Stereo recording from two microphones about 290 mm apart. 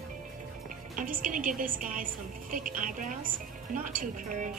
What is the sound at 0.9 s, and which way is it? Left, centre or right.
A woman's voice, right.